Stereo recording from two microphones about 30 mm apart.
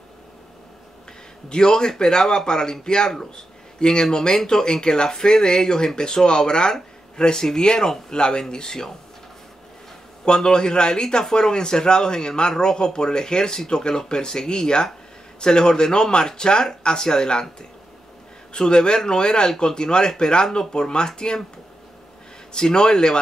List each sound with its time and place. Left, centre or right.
1.5 s a man's voice: left
10.2 s a man's voice: left
22.5 s a man's voice: left